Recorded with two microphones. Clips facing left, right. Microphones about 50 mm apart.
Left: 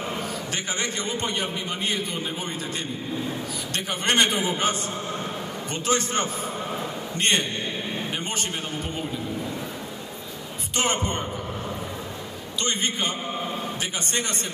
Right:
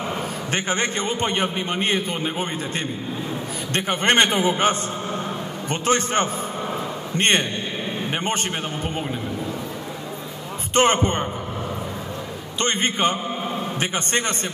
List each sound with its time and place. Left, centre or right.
0.5 s a man's voice: right
3.7 s a man's voice: right
10.7 s speech: right
12.5 s a man's voice: right